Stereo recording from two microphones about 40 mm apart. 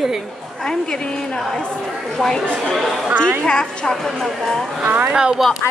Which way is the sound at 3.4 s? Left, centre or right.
Centre.